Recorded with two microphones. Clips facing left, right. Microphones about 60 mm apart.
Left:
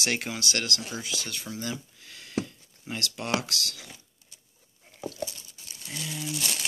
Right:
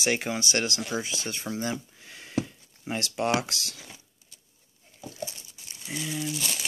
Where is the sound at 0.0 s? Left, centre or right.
Centre; by 3.7 s right.